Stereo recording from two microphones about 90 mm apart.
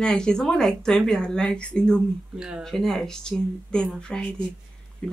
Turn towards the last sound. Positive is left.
turn(degrees=10)  # may be behind; listen again after turning